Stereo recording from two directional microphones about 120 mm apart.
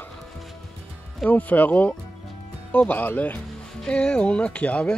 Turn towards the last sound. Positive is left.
turn(degrees=10)  # may be behind; listen again after turning